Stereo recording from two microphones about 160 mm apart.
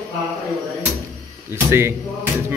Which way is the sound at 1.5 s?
15° right (ahead or behind).